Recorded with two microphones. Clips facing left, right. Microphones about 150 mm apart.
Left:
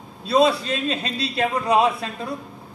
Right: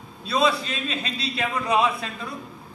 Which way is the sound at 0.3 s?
40° left (ahead or behind).